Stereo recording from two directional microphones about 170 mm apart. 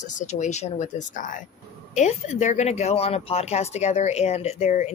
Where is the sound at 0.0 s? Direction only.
45° left (ahead or behind).